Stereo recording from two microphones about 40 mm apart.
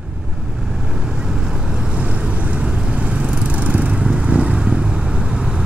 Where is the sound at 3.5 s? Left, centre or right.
Right; by 5.7 s centre.